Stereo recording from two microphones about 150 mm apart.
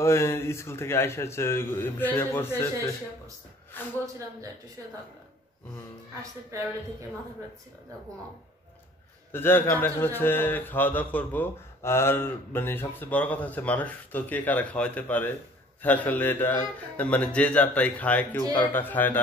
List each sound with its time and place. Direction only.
0.0 s a man's voice: 20° left (ahead or behind)
6.5 s a woman's voice: 20° right (ahead or behind)
9.3 s a man's voice: 15° left (ahead or behind)